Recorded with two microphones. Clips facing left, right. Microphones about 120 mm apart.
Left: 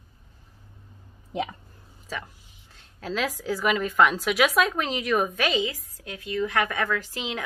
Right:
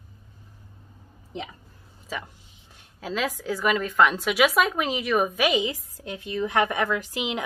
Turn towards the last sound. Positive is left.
turn(degrees=-15)  # may be behind; listen again after turning